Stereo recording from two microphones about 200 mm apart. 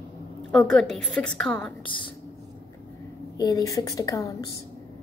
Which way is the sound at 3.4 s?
20° left (ahead or behind).